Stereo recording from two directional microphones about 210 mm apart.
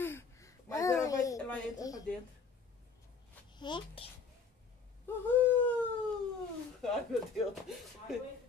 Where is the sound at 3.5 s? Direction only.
20° left (ahead or behind).